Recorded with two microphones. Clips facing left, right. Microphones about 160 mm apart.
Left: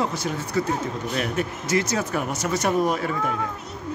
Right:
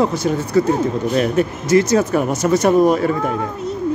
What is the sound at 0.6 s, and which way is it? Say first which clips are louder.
Speech: right 9 dB; 45° right (ahead or behind).